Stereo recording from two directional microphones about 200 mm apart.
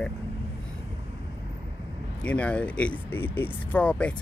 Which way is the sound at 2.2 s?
5° left (ahead or behind).